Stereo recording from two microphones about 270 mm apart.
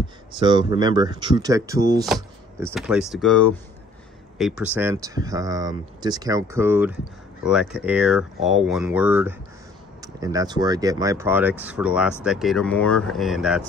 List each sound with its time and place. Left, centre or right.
0.3 s speech: centre